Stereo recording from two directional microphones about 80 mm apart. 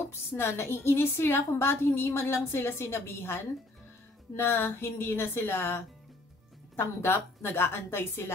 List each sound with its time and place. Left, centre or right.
0.1 s a woman's voice: left
6.8 s speech: left